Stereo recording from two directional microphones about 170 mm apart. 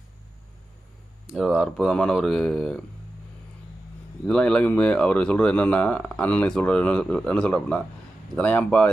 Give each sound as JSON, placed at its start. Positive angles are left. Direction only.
{"t": 1.2, "sound": "speech", "side_deg": 0}
{"t": 4.3, "sound": "speech", "side_deg": 5}